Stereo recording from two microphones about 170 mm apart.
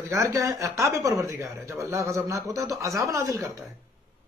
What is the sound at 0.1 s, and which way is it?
A man's voice, 20° right (ahead or behind).